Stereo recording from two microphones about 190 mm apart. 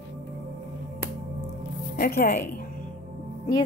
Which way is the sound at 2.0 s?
50° left (ahead or behind).